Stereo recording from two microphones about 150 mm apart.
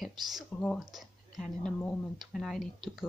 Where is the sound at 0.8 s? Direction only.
Centre (ahead or behind).